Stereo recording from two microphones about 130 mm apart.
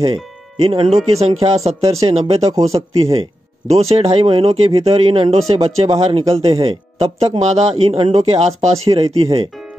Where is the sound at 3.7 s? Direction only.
50° right (ahead or behind).